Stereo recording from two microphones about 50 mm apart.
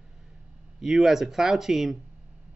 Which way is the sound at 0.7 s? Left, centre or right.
Centre.